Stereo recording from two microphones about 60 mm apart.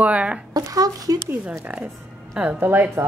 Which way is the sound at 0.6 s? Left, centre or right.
Right.